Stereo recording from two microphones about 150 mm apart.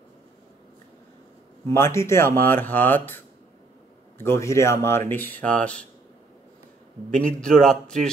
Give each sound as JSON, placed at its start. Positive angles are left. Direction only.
{"t": 1.7, "sound": "a man's voice", "side_deg": 20}
{"t": 7.1, "sound": "a man's voice", "side_deg": 5}